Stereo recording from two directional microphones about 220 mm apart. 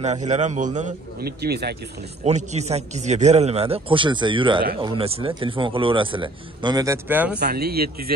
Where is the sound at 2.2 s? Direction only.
30° right (ahead or behind); by 7.4 s 10° right (ahead or behind).